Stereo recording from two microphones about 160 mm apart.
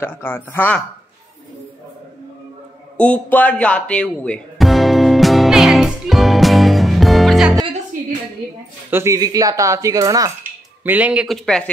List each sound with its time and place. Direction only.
0.0 s speech: 15° left (ahead or behind)
3.0 s music: 10° left (ahead or behind)
8.9 s speech: 20° right (ahead or behind)
10.8 s speech: 10° right (ahead or behind)